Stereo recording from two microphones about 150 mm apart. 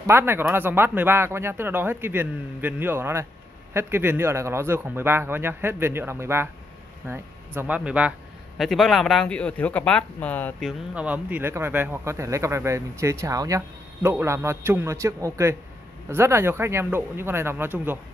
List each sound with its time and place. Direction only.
0.0 s speech: 15° right (ahead or behind)
8.5 s speech: centre (ahead or behind)
11.0 s speech: 10° right (ahead or behind)